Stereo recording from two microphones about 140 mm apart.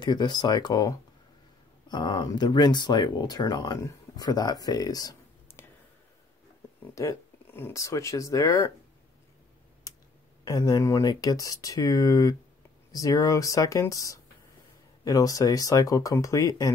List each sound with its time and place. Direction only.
0.0 s speech: 30° left (ahead or behind)
7.0 s speech: 20° left (ahead or behind)
9.9 s a sound: 25° left (ahead or behind)
10.4 s speech: 25° left (ahead or behind)